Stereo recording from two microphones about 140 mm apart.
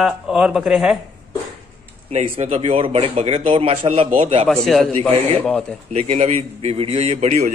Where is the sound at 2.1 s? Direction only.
50° right (ahead or behind).